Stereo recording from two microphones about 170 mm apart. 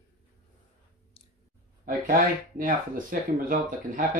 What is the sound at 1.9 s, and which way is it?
Speech, 60° right (ahead or behind).